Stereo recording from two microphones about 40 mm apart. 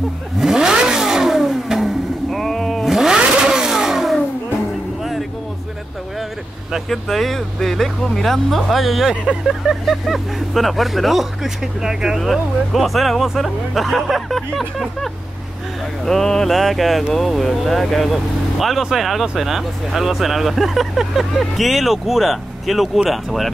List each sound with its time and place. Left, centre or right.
0.4 s vehicle: centre
2.3 s a sound: centre
3.2 s vehicle: centre
6.9 s speech: centre
12.2 s speech: centre
16.1 s mantra: centre
16.5 s speech: centre